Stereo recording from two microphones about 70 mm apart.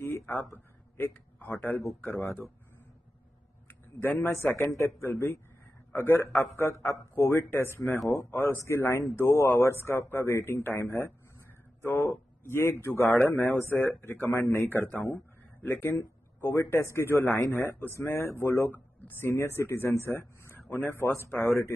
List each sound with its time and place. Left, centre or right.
0.0 s a sound: left
1.0 s a man's voice: left
4.0 s a man's voice: left
4.6 s a man's voice: left
17.4 s a man's voice: left